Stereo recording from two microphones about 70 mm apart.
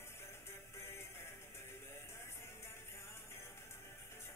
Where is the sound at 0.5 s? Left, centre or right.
Left.